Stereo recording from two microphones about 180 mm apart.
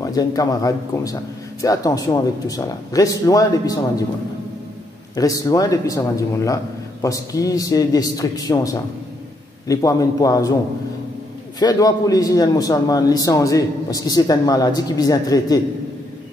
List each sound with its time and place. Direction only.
0.0 s a man's voice: 20° left (ahead or behind)
5.1 s a man's voice: 20° left (ahead or behind)
11.6 s a man's voice: 20° left (ahead or behind)